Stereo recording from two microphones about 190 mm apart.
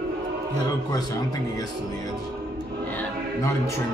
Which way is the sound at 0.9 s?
20° left (ahead or behind).